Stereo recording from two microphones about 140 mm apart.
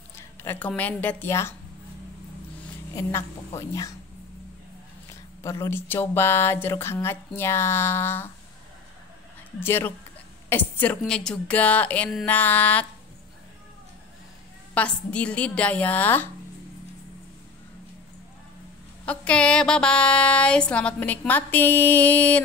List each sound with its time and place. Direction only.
0.4 s speech: 15° left (ahead or behind)
3.0 s a woman's voice: 20° left (ahead or behind)
5.4 s speech: 20° left (ahead or behind)
9.6 s speech: 15° left (ahead or behind)
14.7 s speech: 10° left (ahead or behind)
19.0 s speech: 10° left (ahead or behind)